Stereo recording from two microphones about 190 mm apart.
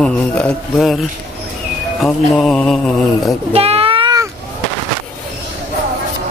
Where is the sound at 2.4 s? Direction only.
5° left (ahead or behind).